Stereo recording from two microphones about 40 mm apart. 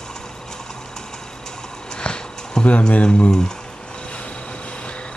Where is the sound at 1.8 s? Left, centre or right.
Left.